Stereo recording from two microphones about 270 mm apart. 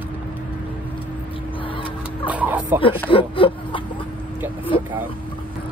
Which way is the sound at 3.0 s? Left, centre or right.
Centre.